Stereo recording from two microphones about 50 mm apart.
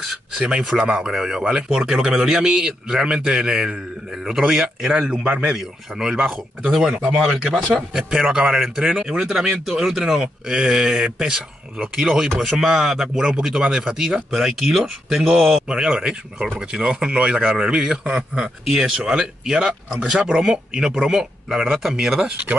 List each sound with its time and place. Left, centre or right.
0.0 s a sound: centre
0.4 s a man's voice: centre
6.2 s speech: centre
6.9 s speech: right
7.2 s a man's voice: centre